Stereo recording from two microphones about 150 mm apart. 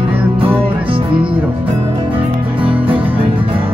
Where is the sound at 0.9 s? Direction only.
35° right (ahead or behind).